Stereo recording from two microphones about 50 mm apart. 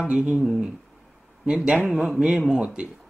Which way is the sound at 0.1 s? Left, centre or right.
Centre.